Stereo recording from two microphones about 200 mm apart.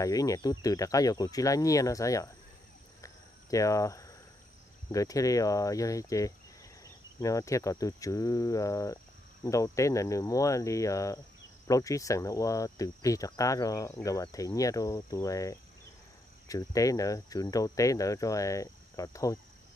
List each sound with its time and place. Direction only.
0.0 s speech: 15° left (ahead or behind)
3.0 s cricket: 15° left (ahead or behind)
4.9 s speech: 15° left (ahead or behind)